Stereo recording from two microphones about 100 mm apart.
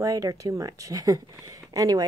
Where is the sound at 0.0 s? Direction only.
35° right (ahead or behind).